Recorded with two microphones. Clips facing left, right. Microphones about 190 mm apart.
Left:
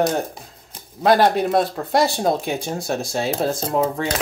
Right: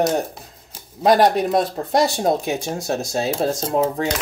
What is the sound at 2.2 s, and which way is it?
Speech, 15° right (ahead or behind).